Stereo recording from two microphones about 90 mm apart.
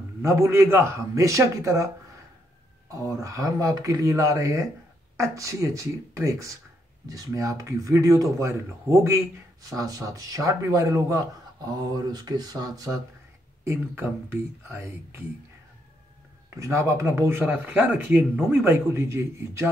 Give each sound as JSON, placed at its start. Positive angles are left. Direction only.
{"t": 0.2, "sound": "speech", "side_deg": -30}
{"t": 2.9, "sound": "speech", "side_deg": -35}
{"t": 11.7, "sound": "speech", "side_deg": -50}
{"t": 13.7, "sound": "speech", "side_deg": -25}
{"t": 16.4, "sound": "speech", "side_deg": -35}